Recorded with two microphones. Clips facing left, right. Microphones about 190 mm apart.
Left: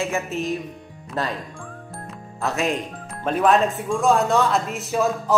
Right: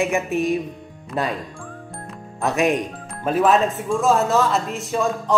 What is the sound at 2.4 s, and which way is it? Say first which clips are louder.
Speech: right 4 dB; 15° right (ahead or behind).